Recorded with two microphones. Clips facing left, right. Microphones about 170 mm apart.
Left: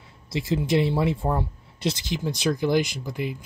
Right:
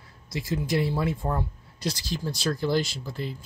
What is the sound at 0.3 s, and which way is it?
Speech, 25° left (ahead or behind).